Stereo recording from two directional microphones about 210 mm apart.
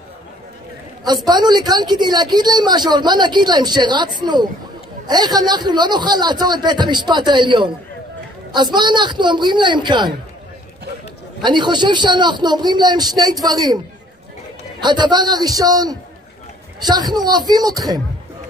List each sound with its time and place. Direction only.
1.0 s a woman's voice: 20° right (ahead or behind)
11.4 s a woman's voice: 20° right (ahead or behind)
14.8 s a woman's voice: 20° right (ahead or behind)